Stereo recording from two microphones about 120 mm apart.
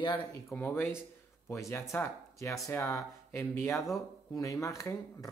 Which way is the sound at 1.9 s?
25° left (ahead or behind).